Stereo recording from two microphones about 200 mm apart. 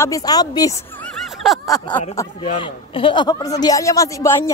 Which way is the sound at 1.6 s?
10° left (ahead or behind).